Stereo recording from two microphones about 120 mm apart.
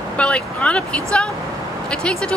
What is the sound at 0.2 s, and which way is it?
Speech, 10° left (ahead or behind).